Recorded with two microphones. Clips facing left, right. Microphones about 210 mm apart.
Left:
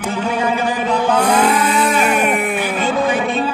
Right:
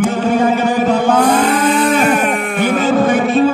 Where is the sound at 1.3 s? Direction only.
10° left (ahead or behind).